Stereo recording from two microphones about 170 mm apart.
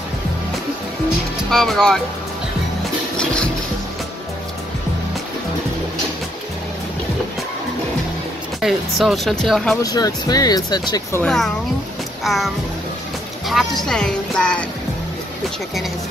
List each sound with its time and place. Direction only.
1.5 s speech: 5° left (ahead or behind)
8.5 s speech: centre (ahead or behind)
9.8 s speech: 20° left (ahead or behind)
11.2 s speech: centre (ahead or behind)
12.2 s music: centre (ahead or behind)
13.5 s speech: centre (ahead or behind)